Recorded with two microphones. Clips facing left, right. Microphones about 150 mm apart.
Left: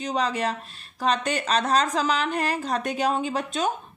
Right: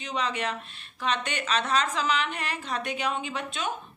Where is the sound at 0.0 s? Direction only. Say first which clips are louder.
Left 5 dB; 40° left (ahead or behind).